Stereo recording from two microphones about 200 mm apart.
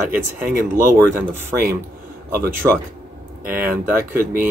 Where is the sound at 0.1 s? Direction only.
10° right (ahead or behind).